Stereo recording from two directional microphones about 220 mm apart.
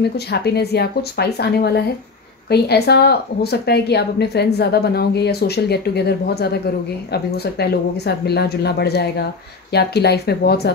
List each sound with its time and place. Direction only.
0.0 s a woman's voice: 50° left (ahead or behind)